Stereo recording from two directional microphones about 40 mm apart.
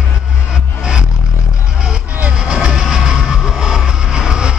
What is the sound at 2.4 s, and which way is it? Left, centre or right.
Music, centre.